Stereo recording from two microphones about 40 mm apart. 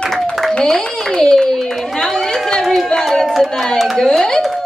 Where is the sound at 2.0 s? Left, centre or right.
Centre.